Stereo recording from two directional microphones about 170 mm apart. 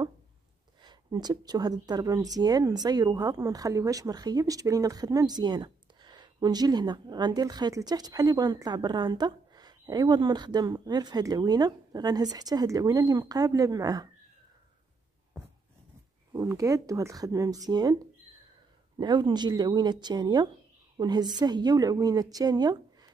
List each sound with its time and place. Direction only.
0.8 s a woman's voice: 25° right (ahead or behind)
16.3 s speech: 20° right (ahead or behind)